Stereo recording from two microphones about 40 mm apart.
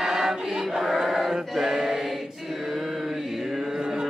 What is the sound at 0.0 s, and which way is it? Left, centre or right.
Choir, centre.